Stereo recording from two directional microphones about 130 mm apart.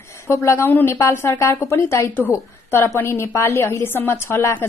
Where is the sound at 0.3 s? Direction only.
20° left (ahead or behind).